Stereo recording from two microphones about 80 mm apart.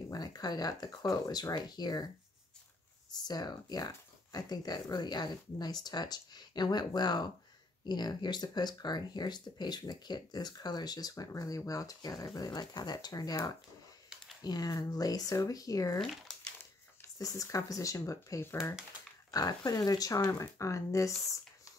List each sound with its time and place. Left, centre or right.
0.1 s speech: left
3.3 s speech: left
16.0 s crumpling: centre
17.2 s speech: left